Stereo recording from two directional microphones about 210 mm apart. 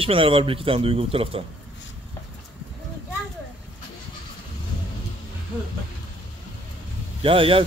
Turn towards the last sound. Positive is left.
turn(degrees=-25)  # may be behind; listen again after turning